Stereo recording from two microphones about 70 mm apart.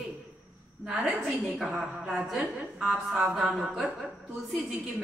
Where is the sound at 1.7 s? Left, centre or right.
Centre.